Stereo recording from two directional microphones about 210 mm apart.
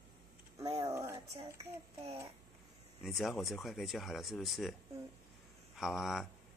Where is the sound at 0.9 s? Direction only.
10° right (ahead or behind).